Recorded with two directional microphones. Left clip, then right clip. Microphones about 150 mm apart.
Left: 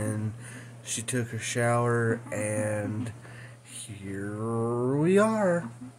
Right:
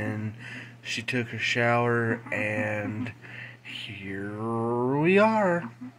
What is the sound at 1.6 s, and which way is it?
Speech, 15° left (ahead or behind).